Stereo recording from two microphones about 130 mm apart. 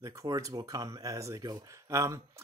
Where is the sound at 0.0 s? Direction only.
25° right (ahead or behind).